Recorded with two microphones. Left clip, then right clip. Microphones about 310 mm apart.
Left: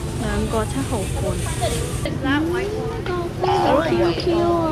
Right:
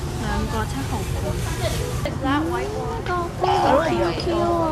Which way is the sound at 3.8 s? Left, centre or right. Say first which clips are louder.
Left 2 dB; right.